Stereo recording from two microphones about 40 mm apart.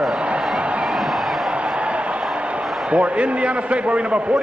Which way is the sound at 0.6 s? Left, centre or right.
Right.